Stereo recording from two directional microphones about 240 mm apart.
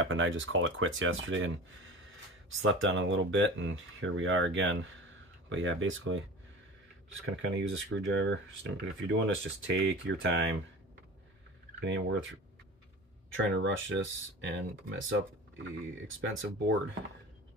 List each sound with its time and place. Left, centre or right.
0.0 s speech: right
2.6 s speech: right
7.4 s speech: right
11.8 s speech: right